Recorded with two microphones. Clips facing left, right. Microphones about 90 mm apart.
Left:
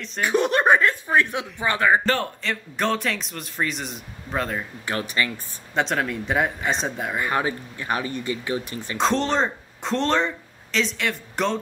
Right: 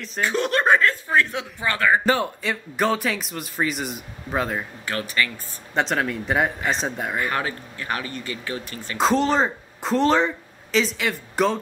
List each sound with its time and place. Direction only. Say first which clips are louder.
0.2 s speech: left 2 dB; 15° left (ahead or behind)
2.0 s speech: right 2 dB; 10° right (ahead or behind)
4.8 s speech: even; 20° left (ahead or behind)
5.8 s speech: right 1 dB; centre (ahead or behind)
7.2 s speech: left 3 dB; 20° left (ahead or behind)
8.9 s speech: right 2 dB; 5° right (ahead or behind)